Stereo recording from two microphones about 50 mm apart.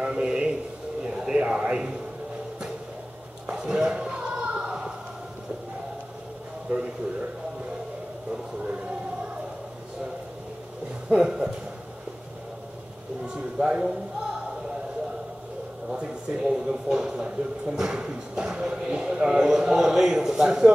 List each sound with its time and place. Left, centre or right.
0.0 s a sound: centre
3.4 s a sound: right
6.7 s a man's voice: right
11.1 s speech: centre
13.3 s speech: centre
15.9 s speech: right